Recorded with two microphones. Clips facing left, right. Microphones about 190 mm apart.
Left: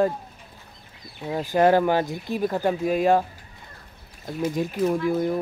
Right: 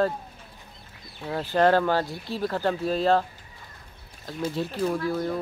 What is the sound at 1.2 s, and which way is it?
Speech, 15° left (ahead or behind).